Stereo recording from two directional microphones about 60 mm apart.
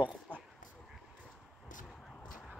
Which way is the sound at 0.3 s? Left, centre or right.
Right.